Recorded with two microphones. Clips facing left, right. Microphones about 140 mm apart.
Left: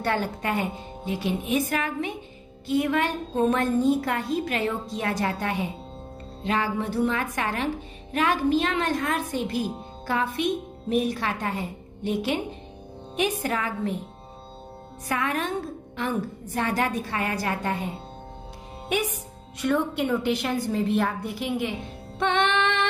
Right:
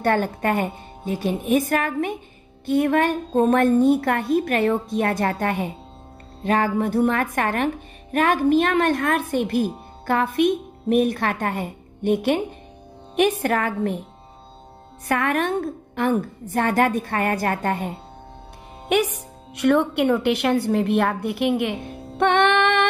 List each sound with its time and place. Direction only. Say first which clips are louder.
0.0 s a woman's voice: right 6 dB; 50° right (ahead or behind)
15.0 s a woman's voice: right 5 dB; 60° right (ahead or behind)
18.9 s a woman's voice: right 6 dB; 70° right (ahead or behind)
22.2 s music: right 6 dB; 60° right (ahead or behind)